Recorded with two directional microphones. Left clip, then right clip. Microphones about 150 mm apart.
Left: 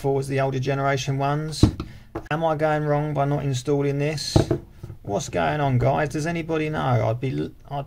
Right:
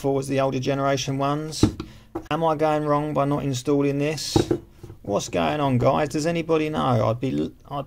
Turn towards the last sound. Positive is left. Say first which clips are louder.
# right 2 dB
turn(degrees=-35)  # may be behind; listen again after turning